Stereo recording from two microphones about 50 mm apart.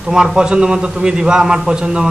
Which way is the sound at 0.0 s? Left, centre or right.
Centre.